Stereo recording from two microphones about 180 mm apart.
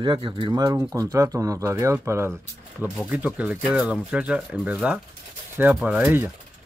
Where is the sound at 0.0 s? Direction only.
25° right (ahead or behind).